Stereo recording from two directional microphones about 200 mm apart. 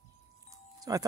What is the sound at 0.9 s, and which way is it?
Speech, 20° right (ahead or behind).